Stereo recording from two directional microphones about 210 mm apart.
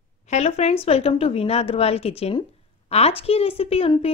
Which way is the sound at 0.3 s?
30° left (ahead or behind).